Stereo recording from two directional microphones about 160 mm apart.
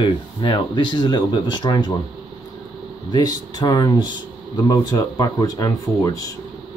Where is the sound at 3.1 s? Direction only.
25° left (ahead or behind).